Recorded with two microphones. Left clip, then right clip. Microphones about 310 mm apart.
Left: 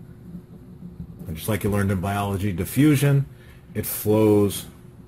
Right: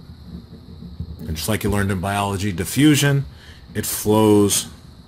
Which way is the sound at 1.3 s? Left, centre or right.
Centre.